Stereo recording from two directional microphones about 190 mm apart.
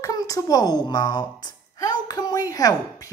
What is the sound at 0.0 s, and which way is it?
A woman's voice, 20° left (ahead or behind).